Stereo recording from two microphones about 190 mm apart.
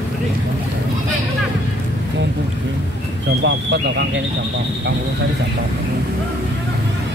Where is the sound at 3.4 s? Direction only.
65° right (ahead or behind).